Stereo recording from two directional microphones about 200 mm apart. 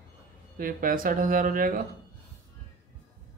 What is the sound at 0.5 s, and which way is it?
Speech, 45° right (ahead or behind).